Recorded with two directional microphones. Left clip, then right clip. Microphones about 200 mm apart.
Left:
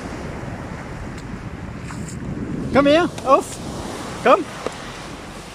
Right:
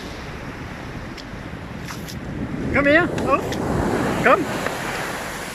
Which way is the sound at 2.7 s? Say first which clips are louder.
Left 1 dB; 15° left (ahead or behind).